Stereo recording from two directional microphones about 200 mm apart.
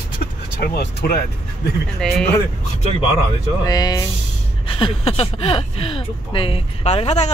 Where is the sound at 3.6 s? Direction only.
20° left (ahead or behind).